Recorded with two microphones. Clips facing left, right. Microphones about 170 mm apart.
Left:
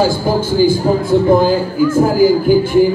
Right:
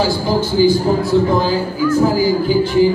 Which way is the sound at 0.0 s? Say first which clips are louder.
Left 2 dB; 50° left (ahead or behind).